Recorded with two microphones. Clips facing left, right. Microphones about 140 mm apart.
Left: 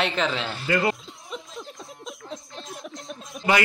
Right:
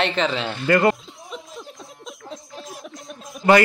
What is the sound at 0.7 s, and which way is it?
Speech, 50° right (ahead or behind).